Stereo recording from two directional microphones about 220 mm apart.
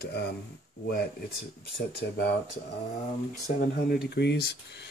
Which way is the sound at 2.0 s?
50° left (ahead or behind).